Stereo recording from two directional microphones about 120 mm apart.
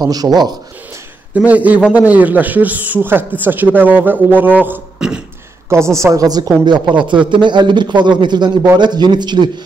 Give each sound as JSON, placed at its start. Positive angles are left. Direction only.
{"t": 0.0, "sound": "a man's voice", "side_deg": -35}
{"t": 1.3, "sound": "a man's voice", "side_deg": -10}
{"t": 5.7, "sound": "a woman's voice", "side_deg": -25}